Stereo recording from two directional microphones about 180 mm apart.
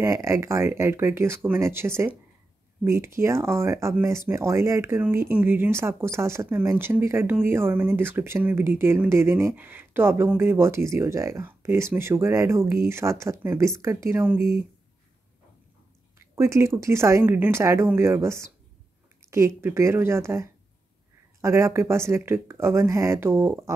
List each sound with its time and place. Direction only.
0.0 s speech: 15° right (ahead or behind)
16.2 s speech: 15° right (ahead or behind)